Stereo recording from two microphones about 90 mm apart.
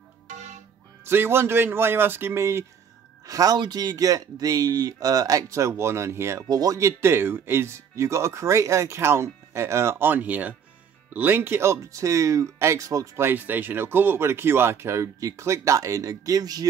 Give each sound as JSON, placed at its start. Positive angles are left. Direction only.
{"t": 1.0, "sound": "speech", "side_deg": -25}
{"t": 3.3, "sound": "speech", "side_deg": -40}
{"t": 6.5, "sound": "speech", "side_deg": -40}
{"t": 13.2, "sound": "speech", "side_deg": -20}